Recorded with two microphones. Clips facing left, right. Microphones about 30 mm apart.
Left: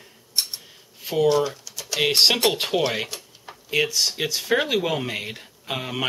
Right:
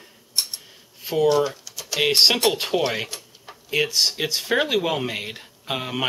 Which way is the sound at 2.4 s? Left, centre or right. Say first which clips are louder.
Even; centre.